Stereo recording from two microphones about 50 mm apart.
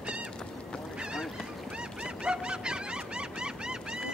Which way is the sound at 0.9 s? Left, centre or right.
Centre.